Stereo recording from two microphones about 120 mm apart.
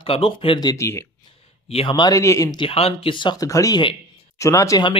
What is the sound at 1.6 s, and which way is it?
Speech, 55° left (ahead or behind).